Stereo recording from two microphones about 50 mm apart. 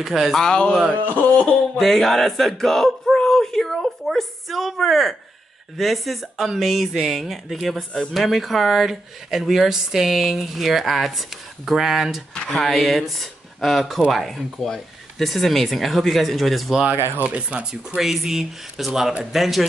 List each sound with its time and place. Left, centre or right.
0.0 s speech: centre
0.3 s speech: centre
1.0 s a sound: left
1.8 s speech: centre
17.2 s speech: right
17.6 s speech: centre